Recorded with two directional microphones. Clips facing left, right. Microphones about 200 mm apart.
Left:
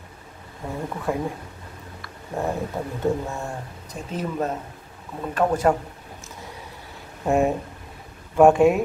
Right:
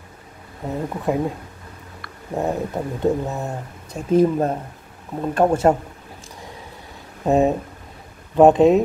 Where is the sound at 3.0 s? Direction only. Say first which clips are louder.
Right 4 dB; 20° right (ahead or behind).